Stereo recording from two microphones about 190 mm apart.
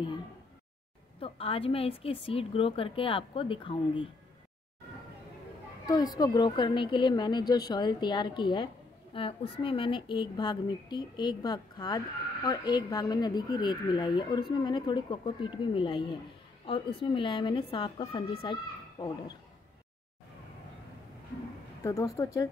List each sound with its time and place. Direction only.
1.2 s a woman's voice: 30° left (ahead or behind)
6.1 s a woman's voice: 20° left (ahead or behind)
21.8 s speech: 15° left (ahead or behind)